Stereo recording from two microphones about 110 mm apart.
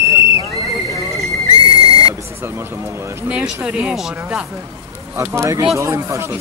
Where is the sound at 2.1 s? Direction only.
25° right (ahead or behind).